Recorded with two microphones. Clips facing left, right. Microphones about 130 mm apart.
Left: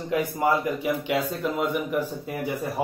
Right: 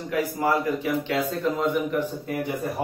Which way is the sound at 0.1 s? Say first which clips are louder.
Left 1 dB; 20° left (ahead or behind).